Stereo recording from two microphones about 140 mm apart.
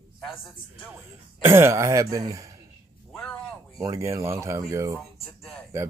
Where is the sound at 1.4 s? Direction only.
20° right (ahead or behind).